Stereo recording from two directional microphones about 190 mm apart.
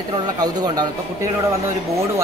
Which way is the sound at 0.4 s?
20° right (ahead or behind).